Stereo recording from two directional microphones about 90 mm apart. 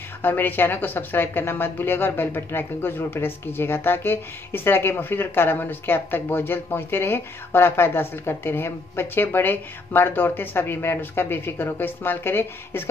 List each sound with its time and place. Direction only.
0.2 s speech: 20° left (ahead or behind)